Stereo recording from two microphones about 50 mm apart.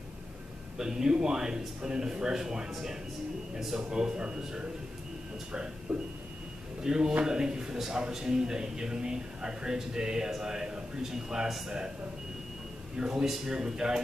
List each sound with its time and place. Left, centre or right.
0.7 s a man's voice: centre
12.9 s a man's voice: centre